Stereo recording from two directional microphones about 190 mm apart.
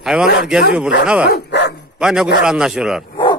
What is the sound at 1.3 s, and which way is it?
Dog, 60° left (ahead or behind).